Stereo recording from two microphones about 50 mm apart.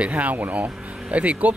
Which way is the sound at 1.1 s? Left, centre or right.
Right.